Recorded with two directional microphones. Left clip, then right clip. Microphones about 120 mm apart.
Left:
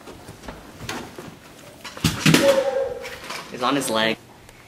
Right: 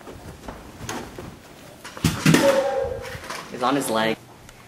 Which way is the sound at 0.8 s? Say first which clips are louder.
Left 1 dB; centre (ahead or behind).